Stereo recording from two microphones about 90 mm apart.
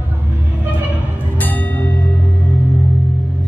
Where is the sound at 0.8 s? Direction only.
15° right (ahead or behind).